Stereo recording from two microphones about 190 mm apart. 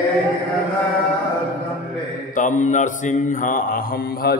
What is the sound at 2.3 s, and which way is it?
Mantra, 40° left (ahead or behind).